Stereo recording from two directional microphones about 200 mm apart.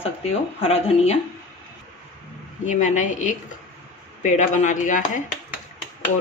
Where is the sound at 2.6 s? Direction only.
40° left (ahead or behind).